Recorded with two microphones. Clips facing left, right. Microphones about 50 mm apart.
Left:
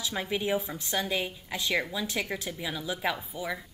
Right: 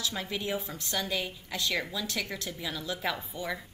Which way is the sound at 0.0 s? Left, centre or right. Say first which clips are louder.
Left 3 dB; centre.